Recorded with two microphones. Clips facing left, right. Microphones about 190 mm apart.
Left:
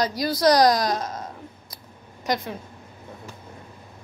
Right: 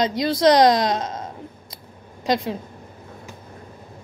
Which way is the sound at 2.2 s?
25° right (ahead or behind).